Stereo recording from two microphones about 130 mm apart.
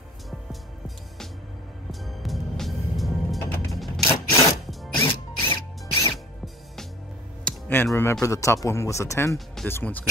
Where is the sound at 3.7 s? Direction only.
Centre (ahead or behind).